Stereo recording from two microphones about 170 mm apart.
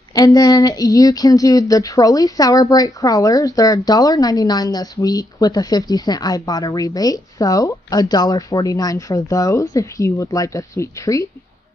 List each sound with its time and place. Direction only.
0.1 s speech: 20° left (ahead or behind)